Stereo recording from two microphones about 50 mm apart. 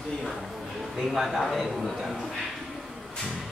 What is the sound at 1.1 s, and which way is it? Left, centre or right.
Speech, centre.